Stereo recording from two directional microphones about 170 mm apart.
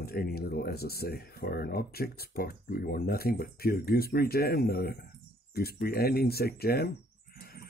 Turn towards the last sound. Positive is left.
turn(degrees=65)  # may be behind; listen again after turning